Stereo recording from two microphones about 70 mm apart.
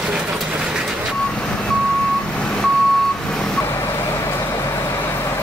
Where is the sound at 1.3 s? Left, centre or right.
Centre.